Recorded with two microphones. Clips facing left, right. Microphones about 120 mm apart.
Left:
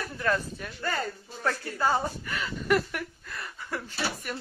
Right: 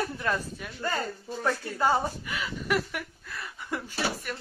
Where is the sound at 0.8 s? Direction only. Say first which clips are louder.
Right 1 dB; 20° right (ahead or behind).